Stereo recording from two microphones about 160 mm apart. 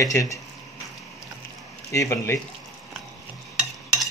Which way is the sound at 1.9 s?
20° left (ahead or behind).